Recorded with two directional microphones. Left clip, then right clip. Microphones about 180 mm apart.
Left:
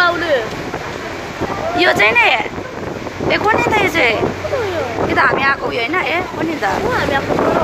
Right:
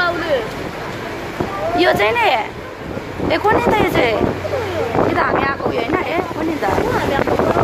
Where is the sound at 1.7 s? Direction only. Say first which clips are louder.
Left 3 dB; 15° right (ahead or behind).